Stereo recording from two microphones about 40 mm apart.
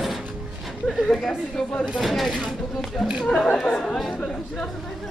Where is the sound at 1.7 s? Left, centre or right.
Left.